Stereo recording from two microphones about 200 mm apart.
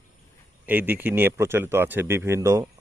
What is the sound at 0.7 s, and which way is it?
Speech, 10° right (ahead or behind).